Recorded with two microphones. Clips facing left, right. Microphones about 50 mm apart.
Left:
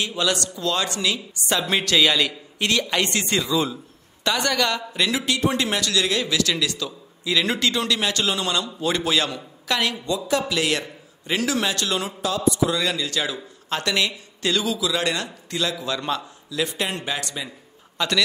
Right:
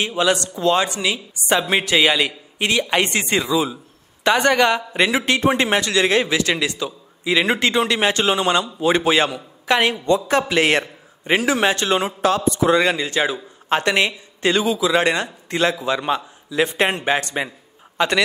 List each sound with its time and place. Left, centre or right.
0.0 s a man's voice: right
3.5 s a man's voice: centre
4.2 s a man's voice: right
10.0 s a man's voice: right
11.3 s a man's voice: right
12.2 s a man's voice: right